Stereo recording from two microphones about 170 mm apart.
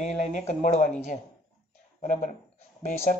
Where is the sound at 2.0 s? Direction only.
45° left (ahead or behind).